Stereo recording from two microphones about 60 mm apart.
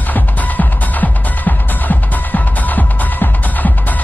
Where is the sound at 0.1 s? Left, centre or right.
Left.